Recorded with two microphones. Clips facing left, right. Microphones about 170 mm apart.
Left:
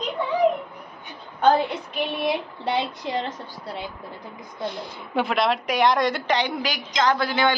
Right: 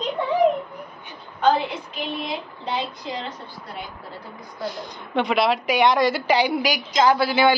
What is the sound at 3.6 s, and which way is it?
Speech, 30° left (ahead or behind).